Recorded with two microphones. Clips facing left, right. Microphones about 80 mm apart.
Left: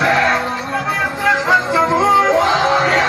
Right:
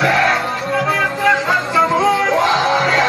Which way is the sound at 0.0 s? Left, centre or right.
Centre.